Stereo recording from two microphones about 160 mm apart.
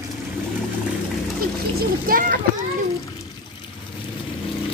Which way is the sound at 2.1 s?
65° right (ahead or behind).